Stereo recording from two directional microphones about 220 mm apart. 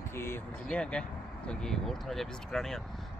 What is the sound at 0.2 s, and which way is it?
Speech, 10° left (ahead or behind).